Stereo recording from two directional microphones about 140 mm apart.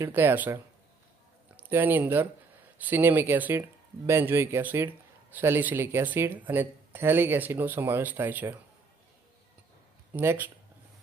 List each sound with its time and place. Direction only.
0.0 s speech: 15° right (ahead or behind)
1.6 s speech: 15° right (ahead or behind)
10.1 s speech: 15° right (ahead or behind)